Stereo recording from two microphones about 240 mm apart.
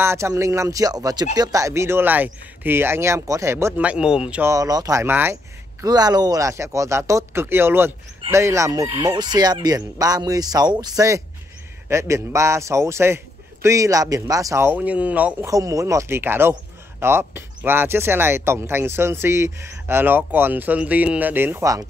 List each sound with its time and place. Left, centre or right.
0.0 s speech: centre